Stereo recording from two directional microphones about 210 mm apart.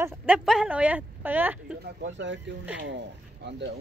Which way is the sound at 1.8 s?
55° right (ahead or behind).